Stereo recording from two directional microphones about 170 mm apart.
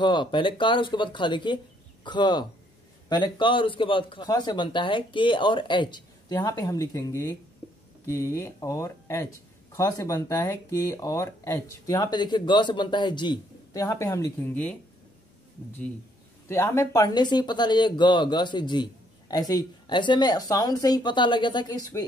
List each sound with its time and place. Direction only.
0.0 s speech: 25° left (ahead or behind); by 14.8 s 10° left (ahead or behind)
16.4 s speech: 15° left (ahead or behind)